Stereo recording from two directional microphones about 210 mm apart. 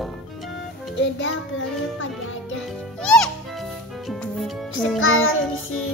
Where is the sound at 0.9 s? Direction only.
60° left (ahead or behind).